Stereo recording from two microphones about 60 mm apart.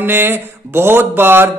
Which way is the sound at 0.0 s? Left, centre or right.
Right.